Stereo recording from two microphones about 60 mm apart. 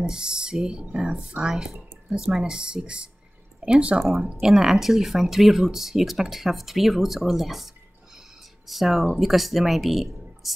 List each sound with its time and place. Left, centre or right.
0.0 s speech: centre